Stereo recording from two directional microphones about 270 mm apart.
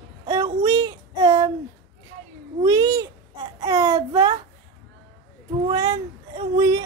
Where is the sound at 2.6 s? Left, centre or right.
Centre.